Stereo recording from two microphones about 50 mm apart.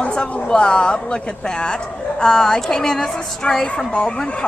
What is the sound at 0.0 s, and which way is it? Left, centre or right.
A woman's voice, centre.